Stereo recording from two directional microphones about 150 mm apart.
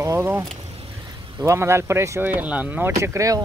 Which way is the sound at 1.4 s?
20° right (ahead or behind).